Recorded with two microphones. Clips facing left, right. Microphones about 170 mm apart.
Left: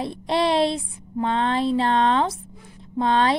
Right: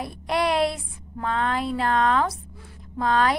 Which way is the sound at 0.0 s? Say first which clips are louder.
Left 3 dB; 25° left (ahead or behind).